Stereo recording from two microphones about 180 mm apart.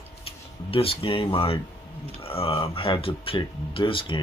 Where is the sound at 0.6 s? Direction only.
30° left (ahead or behind).